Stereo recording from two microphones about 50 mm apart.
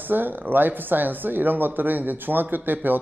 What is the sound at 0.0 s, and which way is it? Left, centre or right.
Speech, right.